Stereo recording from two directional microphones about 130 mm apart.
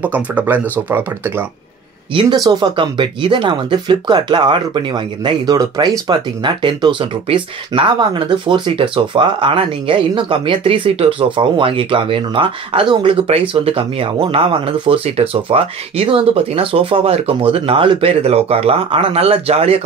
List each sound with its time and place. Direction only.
0.0 s speech: 15° right (ahead or behind)
2.1 s speech: 35° right (ahead or behind); by 19.8 s 50° right (ahead or behind)